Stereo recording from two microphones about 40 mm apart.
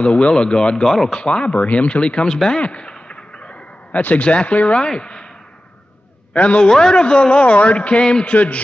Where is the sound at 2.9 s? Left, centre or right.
Left.